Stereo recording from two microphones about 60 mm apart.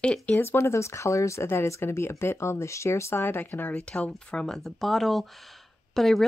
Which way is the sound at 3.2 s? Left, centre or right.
Left.